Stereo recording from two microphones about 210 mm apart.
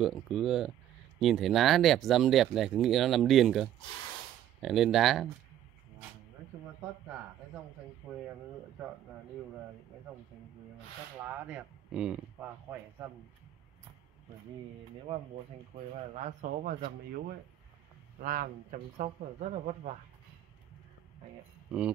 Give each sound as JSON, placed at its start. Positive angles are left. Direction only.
{"t": 0.0, "sound": "speech", "side_deg": 0}
{"t": 11.2, "sound": "speech", "side_deg": -5}
{"t": 16.2, "sound": "speech", "side_deg": -35}
{"t": 18.2, "sound": "speech", "side_deg": -40}